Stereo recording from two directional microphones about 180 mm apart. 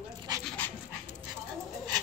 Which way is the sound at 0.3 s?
20° right (ahead or behind).